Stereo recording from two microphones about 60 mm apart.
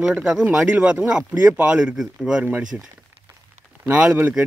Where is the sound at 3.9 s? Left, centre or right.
Right.